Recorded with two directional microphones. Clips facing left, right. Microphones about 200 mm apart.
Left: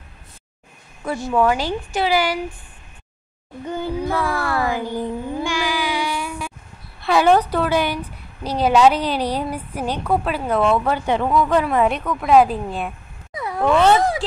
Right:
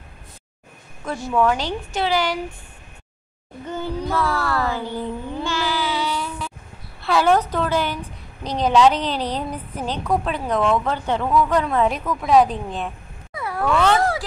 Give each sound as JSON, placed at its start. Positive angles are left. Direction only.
{"t": 1.0, "sound": "a woman's voice", "side_deg": 10}
{"t": 3.6, "sound": "a sound", "side_deg": 10}
{"t": 7.0, "sound": "a woman's voice", "side_deg": 15}